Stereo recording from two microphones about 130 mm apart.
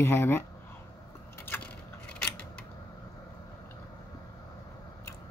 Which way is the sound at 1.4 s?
15° left (ahead or behind).